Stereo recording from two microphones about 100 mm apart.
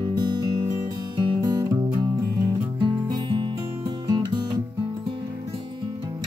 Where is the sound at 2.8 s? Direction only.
50° right (ahead or behind).